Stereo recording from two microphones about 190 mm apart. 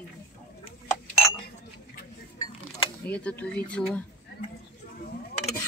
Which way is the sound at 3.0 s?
5° left (ahead or behind).